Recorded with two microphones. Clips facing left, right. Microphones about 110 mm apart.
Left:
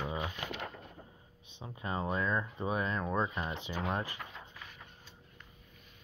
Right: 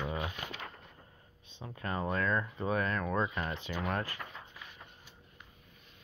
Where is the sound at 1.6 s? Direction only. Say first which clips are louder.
Even; 20° left (ahead or behind).